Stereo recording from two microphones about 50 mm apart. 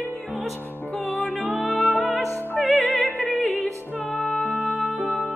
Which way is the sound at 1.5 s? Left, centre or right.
Left.